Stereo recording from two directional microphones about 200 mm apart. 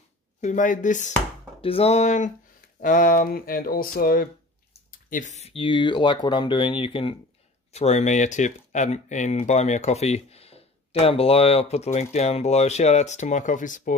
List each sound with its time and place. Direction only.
0.4 s speech: 40° left (ahead or behind)
1.6 s speech: 30° left (ahead or behind)